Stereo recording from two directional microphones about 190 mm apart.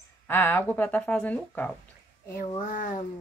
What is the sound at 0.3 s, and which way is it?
Speech, 10° left (ahead or behind).